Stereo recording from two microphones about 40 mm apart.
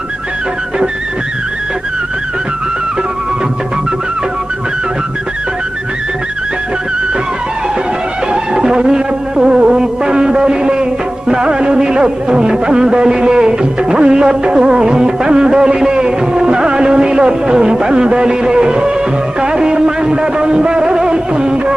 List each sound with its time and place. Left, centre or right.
8.3 s music: centre